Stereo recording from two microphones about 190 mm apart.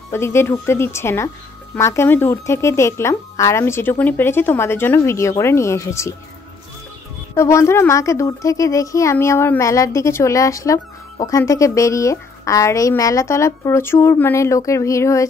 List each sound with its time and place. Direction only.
0.1 s speech: 15° left (ahead or behind)
7.3 s speech: 15° left (ahead or behind)